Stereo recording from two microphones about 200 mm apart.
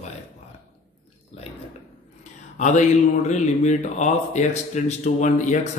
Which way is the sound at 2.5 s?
35° left (ahead or behind).